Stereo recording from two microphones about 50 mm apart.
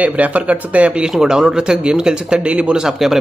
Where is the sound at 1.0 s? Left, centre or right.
Centre.